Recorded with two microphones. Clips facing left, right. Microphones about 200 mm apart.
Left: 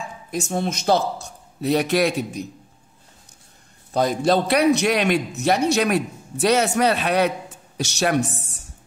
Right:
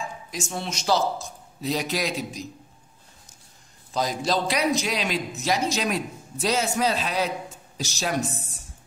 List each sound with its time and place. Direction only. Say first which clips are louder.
0.3 s a man's voice: left 9 dB; 50° left (ahead or behind)
3.9 s a man's voice: left 6 dB; 55° left (ahead or behind)